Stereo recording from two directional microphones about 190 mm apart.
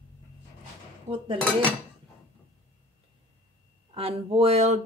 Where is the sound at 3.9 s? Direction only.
30° right (ahead or behind).